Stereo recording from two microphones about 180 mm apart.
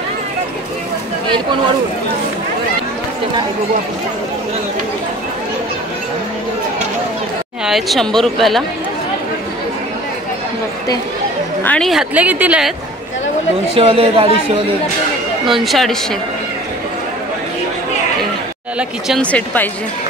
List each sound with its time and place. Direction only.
7.6 s speech: centre (ahead or behind)
11.6 s speech: 5° left (ahead or behind)
13.7 s speech: 30° right (ahead or behind)
15.5 s speech: centre (ahead or behind)
18.8 s speech: centre (ahead or behind)